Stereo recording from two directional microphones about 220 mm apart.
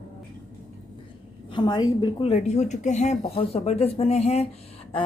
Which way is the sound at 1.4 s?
20° left (ahead or behind).